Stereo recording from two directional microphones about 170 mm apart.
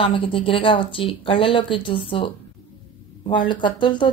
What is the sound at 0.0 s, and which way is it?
A woman's voice, 30° left (ahead or behind).